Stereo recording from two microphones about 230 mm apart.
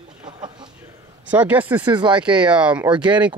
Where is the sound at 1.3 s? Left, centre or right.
Centre.